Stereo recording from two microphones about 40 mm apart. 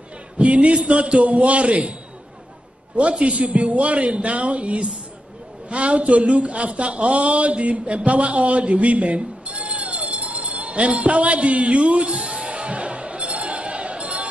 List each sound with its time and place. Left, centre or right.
0.4 s a man's voice: right
3.0 s a man's voice: right
12.1 s music: centre